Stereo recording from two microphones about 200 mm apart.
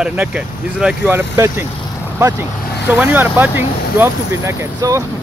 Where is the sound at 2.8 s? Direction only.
10° right (ahead or behind).